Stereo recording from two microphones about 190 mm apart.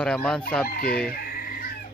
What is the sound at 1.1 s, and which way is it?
Chicken, 50° left (ahead or behind).